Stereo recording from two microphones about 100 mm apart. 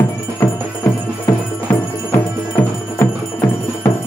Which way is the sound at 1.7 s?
20° left (ahead or behind).